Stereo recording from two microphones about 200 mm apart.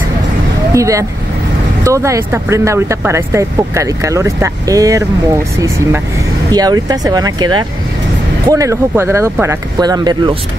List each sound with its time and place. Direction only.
0.7 s speech: 15° right (ahead or behind)
6.5 s speech: 20° right (ahead or behind)